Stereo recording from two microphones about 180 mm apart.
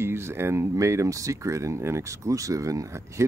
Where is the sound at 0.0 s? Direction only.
15° right (ahead or behind).